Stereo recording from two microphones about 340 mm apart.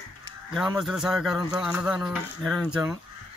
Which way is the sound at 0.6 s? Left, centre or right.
Centre.